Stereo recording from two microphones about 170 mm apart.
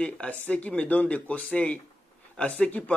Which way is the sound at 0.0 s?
5° left (ahead or behind).